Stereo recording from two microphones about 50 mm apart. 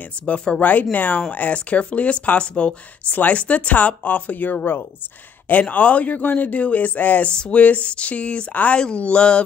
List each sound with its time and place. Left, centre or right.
0.2 s speech: left
0.6 s speech: left
7.2 s speech: left